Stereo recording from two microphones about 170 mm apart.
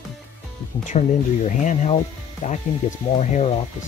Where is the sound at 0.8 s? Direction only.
45° left (ahead or behind).